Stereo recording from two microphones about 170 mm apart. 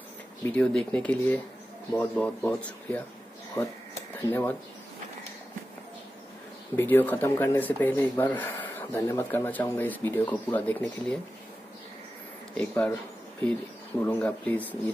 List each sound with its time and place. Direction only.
0.5 s speech: 5° left (ahead or behind)
6.8 s speech: 10° left (ahead or behind)
12.5 s speech: 10° left (ahead or behind)